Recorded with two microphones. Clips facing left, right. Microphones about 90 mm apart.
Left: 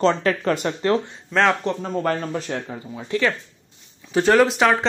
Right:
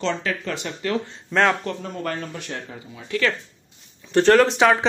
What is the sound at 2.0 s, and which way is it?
Speech, 40° left (ahead or behind).